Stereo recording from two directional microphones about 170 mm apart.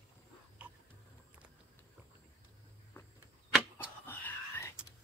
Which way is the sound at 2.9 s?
15° left (ahead or behind).